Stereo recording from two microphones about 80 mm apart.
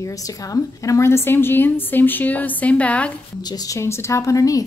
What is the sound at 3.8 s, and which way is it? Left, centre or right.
Speech, left.